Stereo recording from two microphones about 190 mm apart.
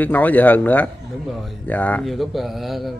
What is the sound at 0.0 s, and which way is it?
A man's voice, 10° left (ahead or behind).